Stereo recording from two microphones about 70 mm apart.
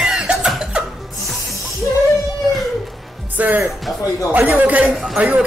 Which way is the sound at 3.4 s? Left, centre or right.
Right.